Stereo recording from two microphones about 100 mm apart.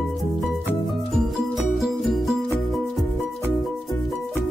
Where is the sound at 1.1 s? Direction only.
Centre (ahead or behind).